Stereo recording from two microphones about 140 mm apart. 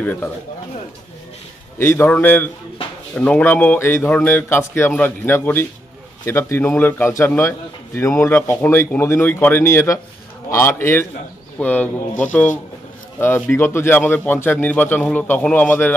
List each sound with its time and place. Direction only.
0.0 s a man's voice: 10° left (ahead or behind)
1.8 s a man's voice: 15° left (ahead or behind)